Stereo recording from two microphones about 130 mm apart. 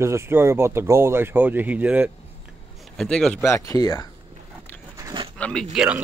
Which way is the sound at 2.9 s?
5° left (ahead or behind).